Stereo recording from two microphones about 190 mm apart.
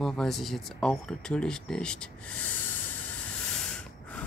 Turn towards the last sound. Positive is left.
turn(degrees=5)  # may be behind; listen again after turning